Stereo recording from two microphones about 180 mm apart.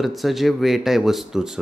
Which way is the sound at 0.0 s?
Centre (ahead or behind).